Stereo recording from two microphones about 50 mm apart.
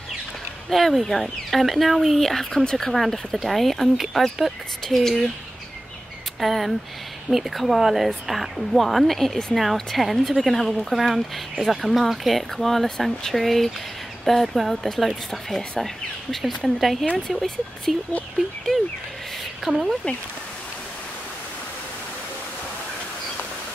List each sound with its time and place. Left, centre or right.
0.7 s a woman's voice: centre
2.6 s speech: centre
2.9 s a woman's voice: centre
6.4 s a woman's voice: centre
18.7 s speech: centre
19.6 s a woman's voice: centre